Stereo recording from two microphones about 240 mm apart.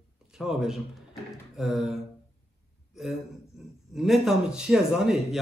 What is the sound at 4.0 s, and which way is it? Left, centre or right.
Speech, centre.